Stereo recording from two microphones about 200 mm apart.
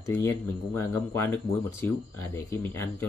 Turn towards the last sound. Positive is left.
turn(degrees=10)  # may be behind; listen again after turning